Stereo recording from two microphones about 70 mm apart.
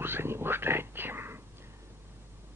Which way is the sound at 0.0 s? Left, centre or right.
Right.